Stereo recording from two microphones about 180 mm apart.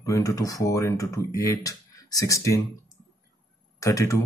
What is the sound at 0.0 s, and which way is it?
Speech, 15° left (ahead or behind).